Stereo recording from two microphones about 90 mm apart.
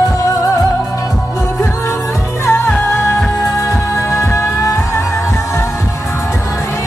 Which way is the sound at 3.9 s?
30° left (ahead or behind).